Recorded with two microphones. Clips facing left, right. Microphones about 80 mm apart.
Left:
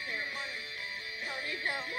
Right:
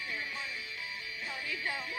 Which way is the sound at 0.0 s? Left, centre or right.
Left.